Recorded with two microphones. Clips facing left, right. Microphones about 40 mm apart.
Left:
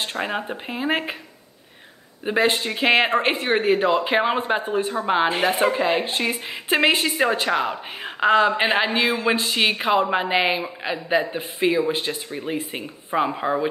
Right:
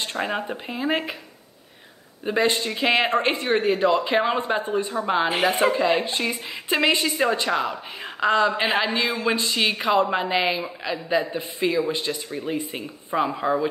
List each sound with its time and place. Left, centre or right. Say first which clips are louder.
0.0 s speech: even; centre
0.7 s a woman's voice: left 1 dB; centre
2.2 s a woman's voice: left 1 dB; left
5.4 s speech: even; centre
5.7 s a woman's voice: even; left
6.4 s a woman's voice: left 3 dB; left
7.0 s a woman's voice: left 1 dB; centre